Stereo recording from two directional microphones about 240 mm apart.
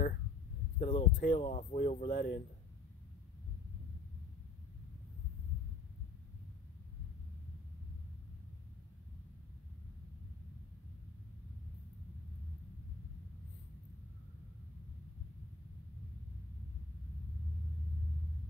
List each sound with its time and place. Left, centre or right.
0.7 s speech: left